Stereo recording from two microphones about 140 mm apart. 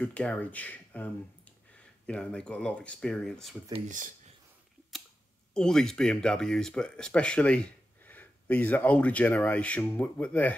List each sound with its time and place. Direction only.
0.0 s speech: 10° left (ahead or behind)
3.7 s speech: 60° right (ahead or behind)
5.5 s speech: 5° left (ahead or behind)